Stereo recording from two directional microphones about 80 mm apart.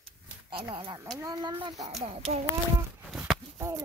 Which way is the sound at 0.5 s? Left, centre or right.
Right.